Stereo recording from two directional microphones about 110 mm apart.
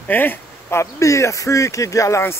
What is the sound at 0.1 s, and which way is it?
Speech, 20° left (ahead or behind).